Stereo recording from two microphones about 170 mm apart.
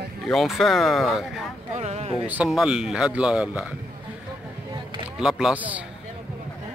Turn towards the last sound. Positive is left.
turn(degrees=-10)  # may be behind; listen again after turning